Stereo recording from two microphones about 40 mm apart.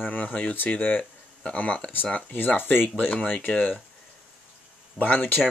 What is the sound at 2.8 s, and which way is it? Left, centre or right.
Speech, left.